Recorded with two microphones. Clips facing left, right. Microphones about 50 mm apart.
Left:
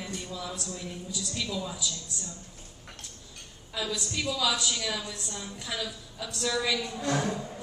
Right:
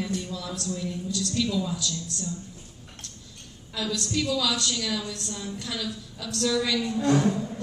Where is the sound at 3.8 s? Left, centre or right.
Centre.